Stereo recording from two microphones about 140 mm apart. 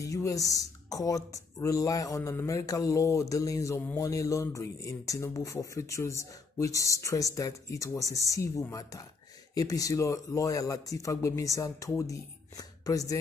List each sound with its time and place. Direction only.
0.0 s speech: 25° left (ahead or behind)